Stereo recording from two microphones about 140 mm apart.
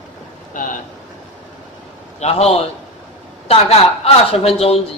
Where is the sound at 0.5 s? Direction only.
70° left (ahead or behind).